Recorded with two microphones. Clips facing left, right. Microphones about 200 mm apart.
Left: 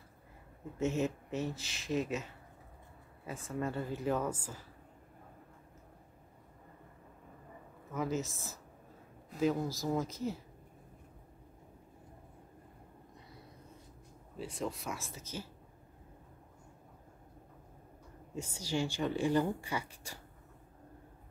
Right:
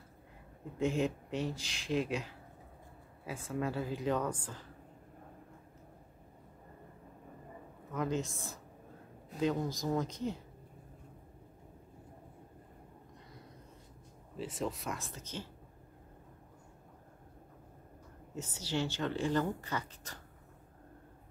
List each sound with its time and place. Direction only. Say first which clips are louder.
0.7 s speech: right 1 dB; 5° left (ahead or behind)
3.4 s speech: right 1 dB; centre (ahead or behind)
7.9 s speech: even; 5° left (ahead or behind)
14.3 s speech: right 1 dB; centre (ahead or behind)
18.3 s speech: left 1 dB; 10° left (ahead or behind)